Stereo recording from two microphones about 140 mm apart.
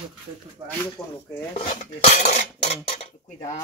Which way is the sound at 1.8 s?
65° left (ahead or behind).